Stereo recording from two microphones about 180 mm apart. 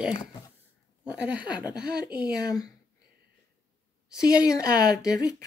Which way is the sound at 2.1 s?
25° left (ahead or behind).